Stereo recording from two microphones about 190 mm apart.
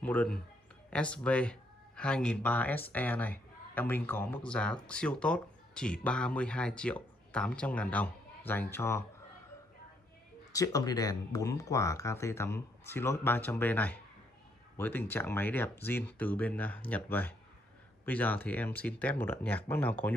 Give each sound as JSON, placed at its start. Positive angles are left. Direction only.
{"t": 0.0, "sound": "speech", "side_deg": 5}
{"t": 10.5, "sound": "speech", "side_deg": 20}